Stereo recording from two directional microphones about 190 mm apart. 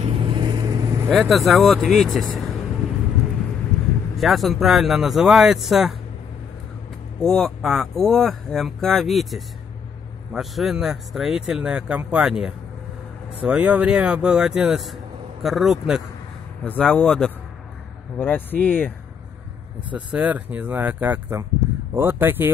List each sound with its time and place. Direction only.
0.0 s vehicle: 25° right (ahead or behind)
1.1 s speech: centre (ahead or behind)
4.2 s speech: centre (ahead or behind)
7.2 s speech: centre (ahead or behind)
19.9 s speech: 5° right (ahead or behind)